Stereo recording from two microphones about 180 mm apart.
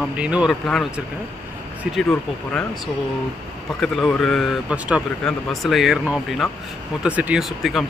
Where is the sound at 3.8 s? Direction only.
Centre (ahead or behind).